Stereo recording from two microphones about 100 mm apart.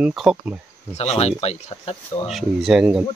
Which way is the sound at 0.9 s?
90° left.